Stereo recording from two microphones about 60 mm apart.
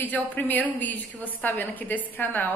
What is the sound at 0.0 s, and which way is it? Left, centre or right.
A woman's voice, left.